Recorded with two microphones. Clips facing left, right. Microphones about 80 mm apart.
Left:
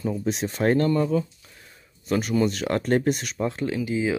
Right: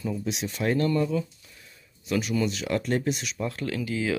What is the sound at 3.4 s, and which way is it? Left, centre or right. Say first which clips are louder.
Speech: left 4 dB; left.